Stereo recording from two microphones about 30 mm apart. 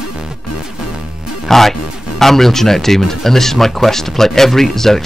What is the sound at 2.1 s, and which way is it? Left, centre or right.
Speech, centre.